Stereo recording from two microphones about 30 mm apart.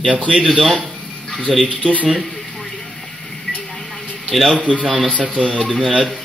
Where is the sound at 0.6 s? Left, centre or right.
Centre.